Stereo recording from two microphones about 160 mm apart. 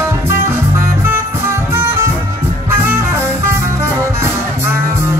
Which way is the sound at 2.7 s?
15° right (ahead or behind).